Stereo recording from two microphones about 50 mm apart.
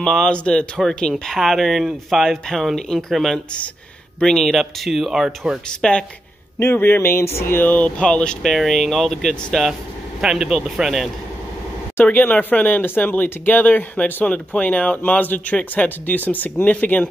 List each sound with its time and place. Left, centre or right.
0.0 s speech: centre
0.7 s speech: centre
5.7 s speech: centre
6.6 s speech: left
7.6 s speech: left
8.1 s speech: centre
8.4 s speech: centre
10.2 s speech: centre
12.0 s speech: left
14.2 s speech: left